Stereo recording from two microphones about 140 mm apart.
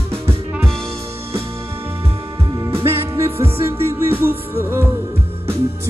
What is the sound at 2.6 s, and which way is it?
Music, 20° right (ahead or behind).